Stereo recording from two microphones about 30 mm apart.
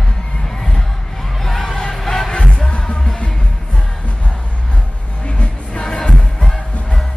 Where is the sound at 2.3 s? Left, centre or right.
Left.